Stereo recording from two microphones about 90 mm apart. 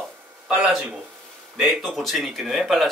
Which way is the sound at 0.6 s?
5° right (ahead or behind).